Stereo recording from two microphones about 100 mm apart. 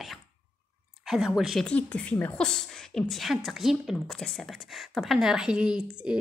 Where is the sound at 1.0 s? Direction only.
5° right (ahead or behind).